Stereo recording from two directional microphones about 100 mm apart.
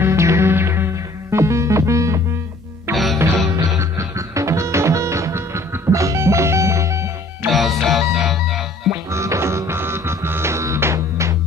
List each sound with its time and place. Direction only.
0.0 s music: 30° right (ahead or behind)
7.5 s music: centre (ahead or behind)
8.9 s music: 30° right (ahead or behind)